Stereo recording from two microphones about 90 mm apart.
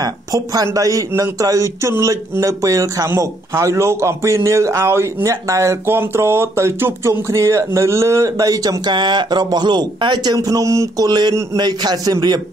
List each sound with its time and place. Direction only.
0.0 s speech: 45° right (ahead or behind)
11.1 s a man's voice: 50° right (ahead or behind)